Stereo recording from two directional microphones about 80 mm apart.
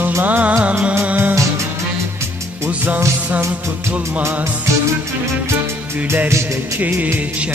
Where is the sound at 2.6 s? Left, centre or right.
Right.